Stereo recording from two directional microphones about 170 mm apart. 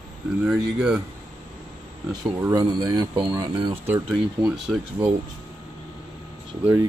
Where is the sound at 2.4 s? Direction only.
20° right (ahead or behind).